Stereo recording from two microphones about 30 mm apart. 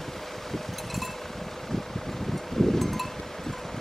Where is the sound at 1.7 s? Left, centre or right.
Centre.